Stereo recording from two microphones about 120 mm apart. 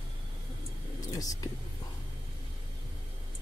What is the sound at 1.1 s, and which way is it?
Speech, 30° left (ahead or behind).